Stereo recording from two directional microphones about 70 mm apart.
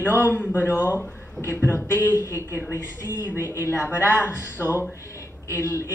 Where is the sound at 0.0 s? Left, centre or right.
Left.